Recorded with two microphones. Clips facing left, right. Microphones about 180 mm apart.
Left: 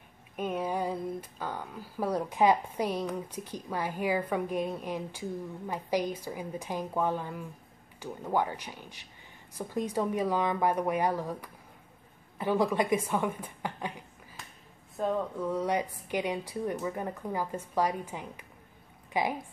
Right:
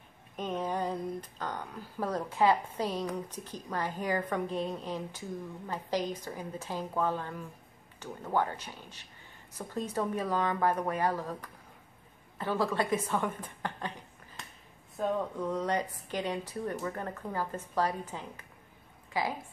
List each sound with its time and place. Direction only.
0.4 s a woman's voice: 10° left (ahead or behind)
15.0 s speech: centre (ahead or behind)
15.5 s a woman's voice: 10° left (ahead or behind)